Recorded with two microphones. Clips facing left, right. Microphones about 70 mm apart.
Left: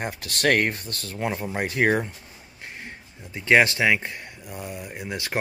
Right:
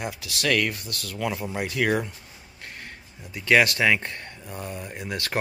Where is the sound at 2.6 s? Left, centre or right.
Left.